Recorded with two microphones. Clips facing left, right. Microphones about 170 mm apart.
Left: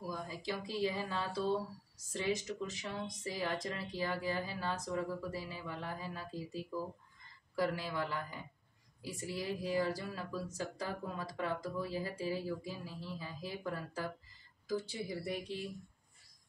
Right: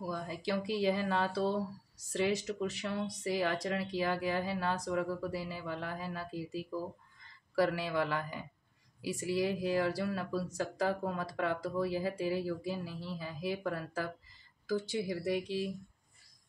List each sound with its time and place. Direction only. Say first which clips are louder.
0.1 s a man's voice: right 6 dB; 70° right (ahead or behind); by 15.7 s 90° right